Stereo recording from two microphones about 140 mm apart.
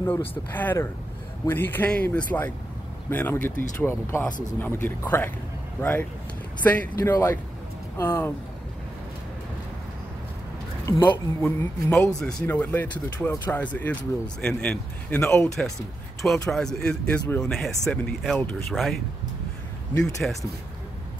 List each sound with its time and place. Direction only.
0.5 s speech: 15° left (ahead or behind)
10.9 s speech: 15° left (ahead or behind)
16.2 s speech: centre (ahead or behind)
20.2 s speech: centre (ahead or behind)